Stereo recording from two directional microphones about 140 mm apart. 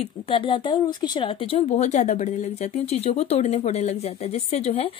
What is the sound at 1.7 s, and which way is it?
Speech, 55° left (ahead or behind).